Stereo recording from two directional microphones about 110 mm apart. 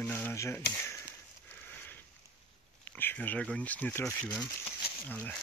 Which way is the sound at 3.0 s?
15° left (ahead or behind).